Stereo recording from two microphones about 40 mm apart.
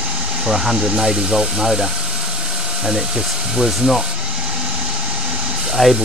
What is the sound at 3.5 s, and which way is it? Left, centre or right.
Speech, centre.